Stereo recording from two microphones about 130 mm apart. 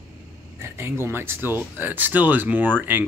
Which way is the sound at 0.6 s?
20° right (ahead or behind).